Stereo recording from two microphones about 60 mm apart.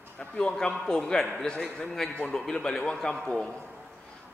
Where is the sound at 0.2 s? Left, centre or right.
Centre.